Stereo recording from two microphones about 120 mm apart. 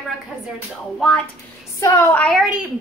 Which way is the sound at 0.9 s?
5° left (ahead or behind).